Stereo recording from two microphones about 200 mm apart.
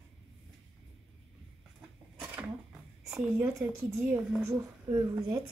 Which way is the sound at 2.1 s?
5° right (ahead or behind).